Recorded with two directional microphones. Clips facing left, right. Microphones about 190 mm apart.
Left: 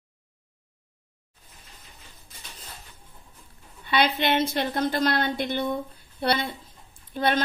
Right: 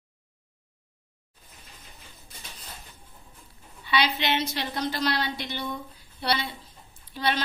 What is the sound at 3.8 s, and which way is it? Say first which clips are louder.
A woman's voice: left 3 dB; 50° left (ahead or behind).